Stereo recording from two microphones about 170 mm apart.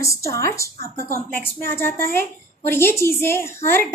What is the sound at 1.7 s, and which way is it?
A woman's voice, 15° left (ahead or behind).